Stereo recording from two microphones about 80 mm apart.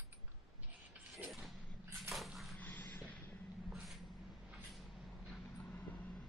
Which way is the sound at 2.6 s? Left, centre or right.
Left.